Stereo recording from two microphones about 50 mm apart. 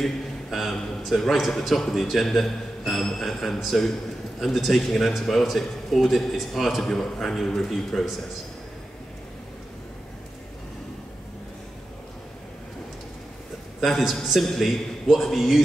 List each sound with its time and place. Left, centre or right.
0.0 s a man's voice: centre
13.7 s a man's voice: centre